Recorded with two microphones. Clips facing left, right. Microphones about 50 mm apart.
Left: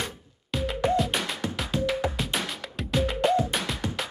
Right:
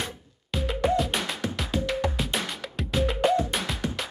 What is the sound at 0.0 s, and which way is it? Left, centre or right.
Music, centre.